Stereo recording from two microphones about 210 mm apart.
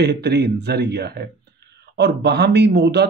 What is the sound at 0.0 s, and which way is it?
A man's voice, 50° right (ahead or behind).